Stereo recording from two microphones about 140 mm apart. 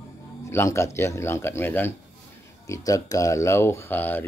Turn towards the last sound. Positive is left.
turn(degrees=15)  # may be behind; listen again after turning